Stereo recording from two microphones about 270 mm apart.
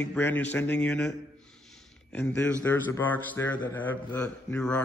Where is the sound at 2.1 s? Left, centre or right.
Centre.